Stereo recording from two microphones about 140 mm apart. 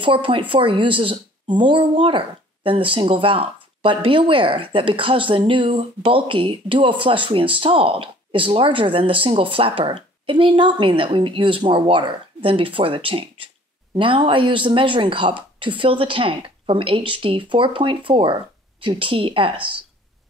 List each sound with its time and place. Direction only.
0.0 s speech: 40° right (ahead or behind)